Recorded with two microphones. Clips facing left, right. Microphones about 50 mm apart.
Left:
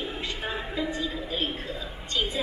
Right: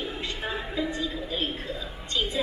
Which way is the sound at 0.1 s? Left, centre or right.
Left.